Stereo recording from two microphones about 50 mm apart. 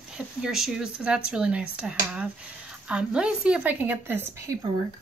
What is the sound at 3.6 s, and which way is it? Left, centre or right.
Speech, right.